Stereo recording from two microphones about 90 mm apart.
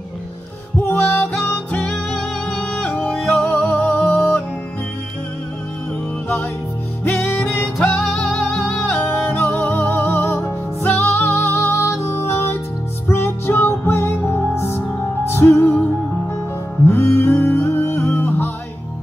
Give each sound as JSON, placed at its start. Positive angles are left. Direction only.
{"t": 0.8, "sound": "music", "side_deg": 25}
{"t": 7.1, "sound": "music", "side_deg": 20}
{"t": 7.8, "sound": "music", "side_deg": 10}
{"t": 16.8, "sound": "music", "side_deg": 25}